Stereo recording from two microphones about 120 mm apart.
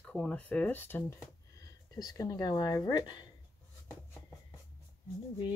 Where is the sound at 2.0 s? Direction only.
30° left (ahead or behind).